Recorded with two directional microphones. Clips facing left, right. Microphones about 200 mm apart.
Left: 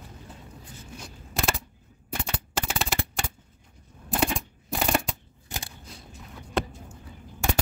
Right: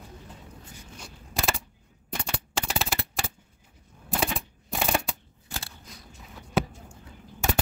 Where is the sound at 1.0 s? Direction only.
Centre (ahead or behind).